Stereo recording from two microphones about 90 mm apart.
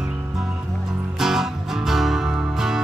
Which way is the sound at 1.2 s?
5° right (ahead or behind).